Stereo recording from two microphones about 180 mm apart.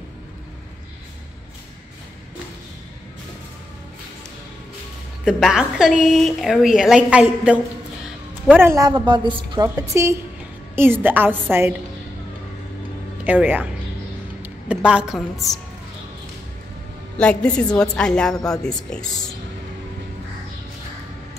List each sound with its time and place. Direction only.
5.2 s a woman's voice: 5° right (ahead or behind)
8.5 s a woman's voice: 15° right (ahead or behind)
13.2 s a woman's voice: 10° right (ahead or behind)
17.2 s a woman's voice: 5° left (ahead or behind)